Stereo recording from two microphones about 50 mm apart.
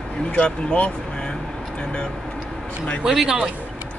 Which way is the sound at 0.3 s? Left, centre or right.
Left.